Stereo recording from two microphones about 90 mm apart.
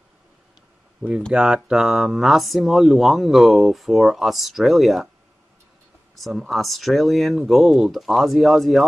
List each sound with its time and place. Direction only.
1.3 s speech: 5° right (ahead or behind)
6.1 s speech: centre (ahead or behind)